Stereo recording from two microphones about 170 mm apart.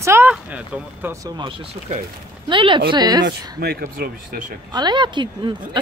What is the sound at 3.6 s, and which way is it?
Speech, 65° right (ahead or behind).